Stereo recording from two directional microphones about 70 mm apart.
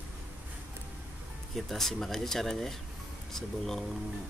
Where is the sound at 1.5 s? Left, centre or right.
Centre.